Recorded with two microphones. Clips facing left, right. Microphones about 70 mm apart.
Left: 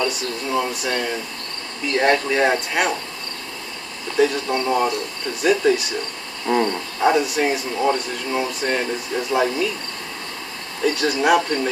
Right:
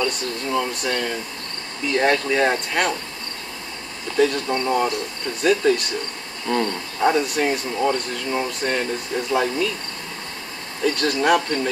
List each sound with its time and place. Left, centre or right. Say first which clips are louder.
0.0 s speech: left 1 dB; centre
4.2 s speech: left 1 dB; centre
6.4 s a sound: left 3 dB; centre
7.0 s speech: left 1 dB; centre
10.8 s speech: left 1 dB; centre